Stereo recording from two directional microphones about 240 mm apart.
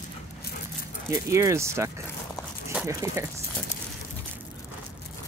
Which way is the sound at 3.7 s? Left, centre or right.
Left.